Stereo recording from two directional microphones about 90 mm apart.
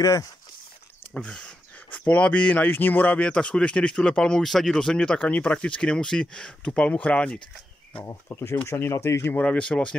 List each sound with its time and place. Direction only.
0.0 s speech: 40° left (ahead or behind)
1.1 s speech: 10° left (ahead or behind)
8.0 s speech: 30° left (ahead or behind)
9.4 s speech: 15° left (ahead or behind)